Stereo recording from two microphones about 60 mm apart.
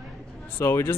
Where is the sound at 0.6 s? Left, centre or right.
Left.